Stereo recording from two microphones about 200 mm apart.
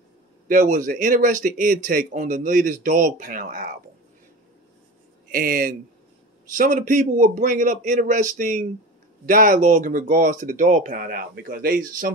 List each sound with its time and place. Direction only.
0.5 s speech: 40° right (ahead or behind)
5.3 s speech: 45° right (ahead or behind)